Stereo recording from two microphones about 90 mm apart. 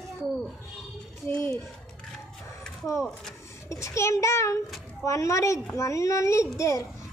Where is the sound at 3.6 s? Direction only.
35° left (ahead or behind).